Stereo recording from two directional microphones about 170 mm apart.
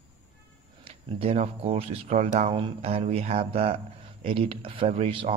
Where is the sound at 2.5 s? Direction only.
30° right (ahead or behind).